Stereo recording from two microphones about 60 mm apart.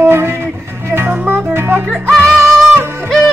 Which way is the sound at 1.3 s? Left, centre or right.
Right.